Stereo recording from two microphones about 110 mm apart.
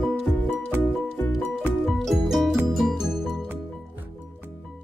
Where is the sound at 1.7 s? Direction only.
Centre (ahead or behind).